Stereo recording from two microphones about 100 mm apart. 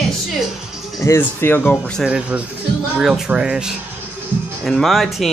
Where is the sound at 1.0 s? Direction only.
25° left (ahead or behind).